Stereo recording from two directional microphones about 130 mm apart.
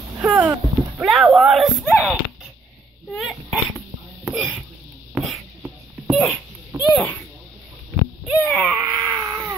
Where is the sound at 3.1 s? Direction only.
5° left (ahead or behind).